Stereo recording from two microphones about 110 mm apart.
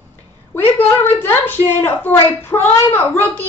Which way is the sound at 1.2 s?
20° left (ahead or behind).